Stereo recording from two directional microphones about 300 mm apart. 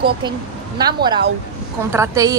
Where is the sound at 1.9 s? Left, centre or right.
Centre.